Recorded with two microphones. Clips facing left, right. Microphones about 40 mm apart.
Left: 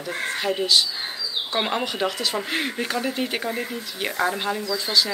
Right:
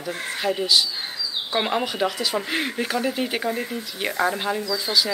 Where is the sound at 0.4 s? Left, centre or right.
Centre.